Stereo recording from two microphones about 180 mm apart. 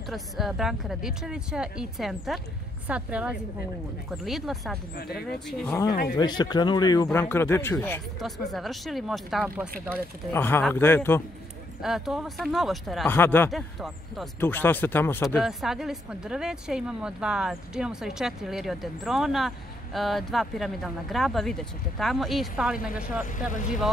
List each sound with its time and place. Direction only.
0.0 s a woman's voice: centre (ahead or behind)
4.9 s speech: 60° left (ahead or behind)
5.5 s speech: 5° left (ahead or behind)
6.1 s speech: 25° left (ahead or behind)
7.1 s speech: 10° left (ahead or behind)
8.2 s speech: centre (ahead or behind)
10.3 s speech: 10° left (ahead or behind)
11.8 s speech: centre (ahead or behind)
13.1 s speech: 10° left (ahead or behind)
13.5 s speech: centre (ahead or behind)
14.4 s speech: 10° left (ahead or behind)
15.2 s speech: centre (ahead or behind)
23.5 s speech: 45° left (ahead or behind)